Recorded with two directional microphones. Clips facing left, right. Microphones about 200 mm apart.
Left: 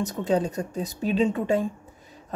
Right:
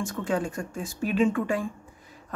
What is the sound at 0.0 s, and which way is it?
Speech, 20° left (ahead or behind).